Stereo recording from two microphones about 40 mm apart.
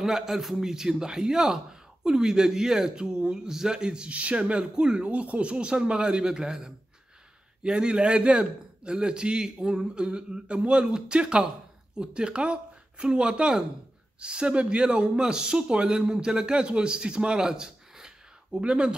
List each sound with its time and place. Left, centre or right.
0.0 s a man's voice: centre; by 18.9 s right